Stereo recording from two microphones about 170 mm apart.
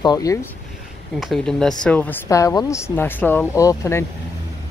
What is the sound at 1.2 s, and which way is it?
Speech, centre (ahead or behind).